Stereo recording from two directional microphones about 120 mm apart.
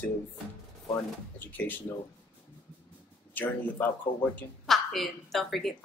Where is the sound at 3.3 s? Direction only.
15° left (ahead or behind).